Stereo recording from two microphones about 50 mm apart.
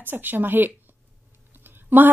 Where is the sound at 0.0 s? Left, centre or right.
Right.